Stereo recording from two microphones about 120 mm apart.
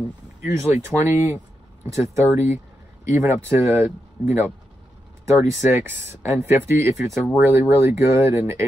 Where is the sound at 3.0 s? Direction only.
20° right (ahead or behind).